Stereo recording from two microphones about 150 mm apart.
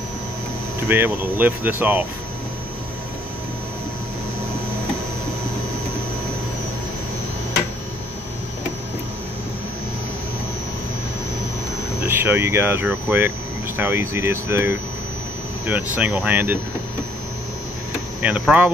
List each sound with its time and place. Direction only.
0.8 s speech: 15° right (ahead or behind)
12.0 s speech: 15° right (ahead or behind)
18.4 s speech: 5° right (ahead or behind)